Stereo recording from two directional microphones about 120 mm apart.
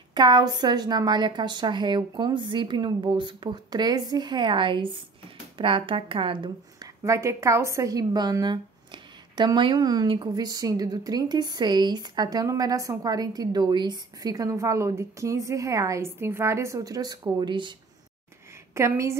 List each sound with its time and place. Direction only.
0.1 s a woman's voice: 40° right (ahead or behind)
18.8 s a woman's voice: 25° right (ahead or behind)